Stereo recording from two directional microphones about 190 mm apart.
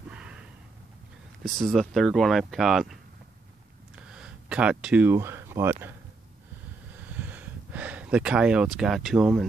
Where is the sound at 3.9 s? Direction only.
5° right (ahead or behind).